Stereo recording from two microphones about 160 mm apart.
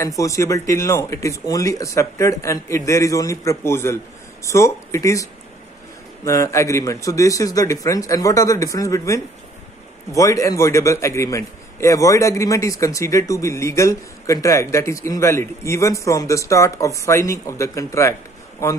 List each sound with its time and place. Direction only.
0.0 s a man's voice: 20° left (ahead or behind)